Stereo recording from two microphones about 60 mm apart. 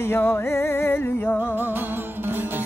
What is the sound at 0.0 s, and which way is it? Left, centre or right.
Music, left.